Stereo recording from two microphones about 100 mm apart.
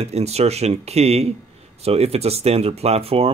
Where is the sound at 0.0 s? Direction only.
90° right.